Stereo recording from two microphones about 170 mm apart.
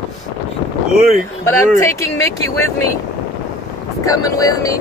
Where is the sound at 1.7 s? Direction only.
15° left (ahead or behind).